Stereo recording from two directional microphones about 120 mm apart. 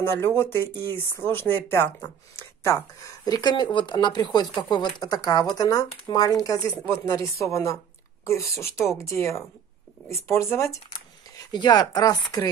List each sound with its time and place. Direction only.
0.4 s speech: 20° left (ahead or behind)
3.3 s speech: 35° left (ahead or behind)